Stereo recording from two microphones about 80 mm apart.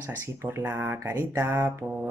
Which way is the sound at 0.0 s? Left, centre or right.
Right.